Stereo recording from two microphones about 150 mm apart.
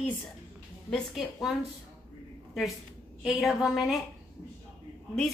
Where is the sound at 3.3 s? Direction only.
Centre (ahead or behind).